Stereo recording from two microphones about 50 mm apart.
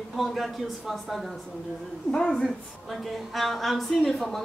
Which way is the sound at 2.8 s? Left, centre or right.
Centre.